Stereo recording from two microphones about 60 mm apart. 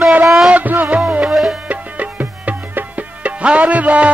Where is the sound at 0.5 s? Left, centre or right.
Right.